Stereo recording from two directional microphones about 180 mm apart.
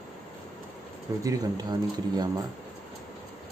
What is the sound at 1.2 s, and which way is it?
Speech, 20° right (ahead or behind).